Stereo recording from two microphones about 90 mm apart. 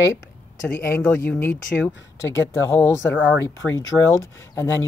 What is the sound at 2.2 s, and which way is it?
Speech, 30° left (ahead or behind).